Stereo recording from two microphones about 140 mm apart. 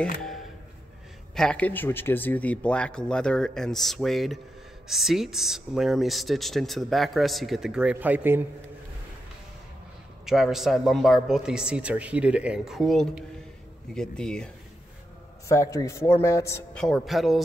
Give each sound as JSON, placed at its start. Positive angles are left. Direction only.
{"t": 1.3, "sound": "speech", "side_deg": 5}
{"t": 10.2, "sound": "speech", "side_deg": -5}
{"t": 15.4, "sound": "speech", "side_deg": 20}
{"t": 16.7, "sound": "speech", "side_deg": 0}